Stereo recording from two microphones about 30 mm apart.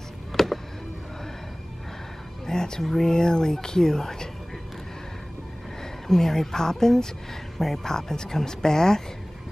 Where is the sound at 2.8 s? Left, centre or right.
Centre.